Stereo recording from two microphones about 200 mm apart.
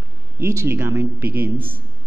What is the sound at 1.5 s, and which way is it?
Speech, 25° right (ahead or behind).